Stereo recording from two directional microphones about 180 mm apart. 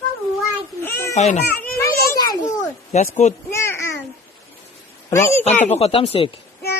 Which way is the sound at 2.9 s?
40° left (ahead or behind).